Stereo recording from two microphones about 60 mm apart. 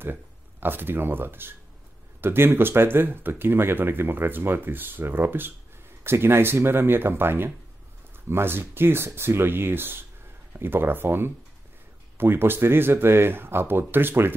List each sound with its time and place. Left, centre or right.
0.0 s speech: right